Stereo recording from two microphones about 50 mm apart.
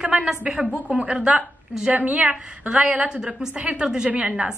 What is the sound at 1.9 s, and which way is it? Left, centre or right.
A woman's voice, right.